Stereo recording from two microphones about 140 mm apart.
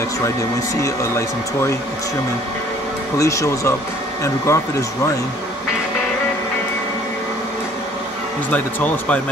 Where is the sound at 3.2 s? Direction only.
20° left (ahead or behind).